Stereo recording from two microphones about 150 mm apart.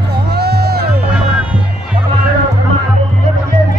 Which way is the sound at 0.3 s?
90° right.